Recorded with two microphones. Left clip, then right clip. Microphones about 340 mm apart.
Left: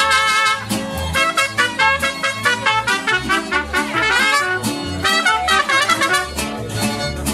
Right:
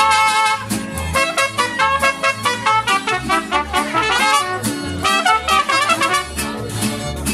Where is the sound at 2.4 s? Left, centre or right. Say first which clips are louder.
Left 4 dB; centre.